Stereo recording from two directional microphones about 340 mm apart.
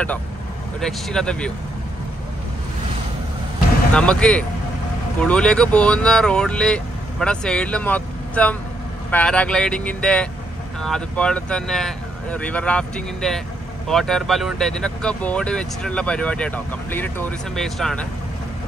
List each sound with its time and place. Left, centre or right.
0.7 s speech: centre
3.9 s speech: centre